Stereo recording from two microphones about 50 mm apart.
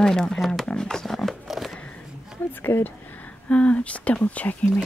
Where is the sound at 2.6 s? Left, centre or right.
Left.